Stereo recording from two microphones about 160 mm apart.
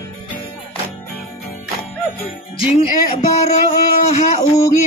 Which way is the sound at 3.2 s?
45° left (ahead or behind).